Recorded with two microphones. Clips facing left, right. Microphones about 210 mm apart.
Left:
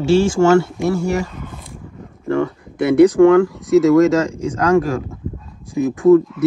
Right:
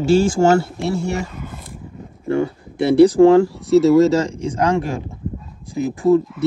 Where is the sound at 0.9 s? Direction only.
25° right (ahead or behind).